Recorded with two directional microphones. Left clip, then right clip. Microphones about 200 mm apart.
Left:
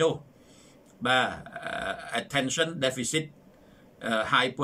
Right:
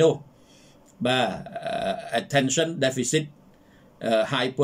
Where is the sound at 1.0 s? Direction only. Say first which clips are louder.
Right 1 dB; 15° right (ahead or behind).